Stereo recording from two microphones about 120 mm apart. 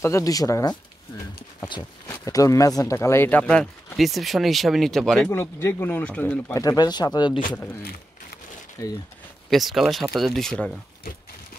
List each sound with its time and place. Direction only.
0.0 s speech: 25° left (ahead or behind)
2.0 s speech: 25° left (ahead or behind); by 5.3 s 5° left (ahead or behind)
5.3 s speech: 20° left (ahead or behind)
6.6 s speech: 35° left (ahead or behind)
8.8 s speech: 25° left (ahead or behind)
9.5 s speech: centre (ahead or behind)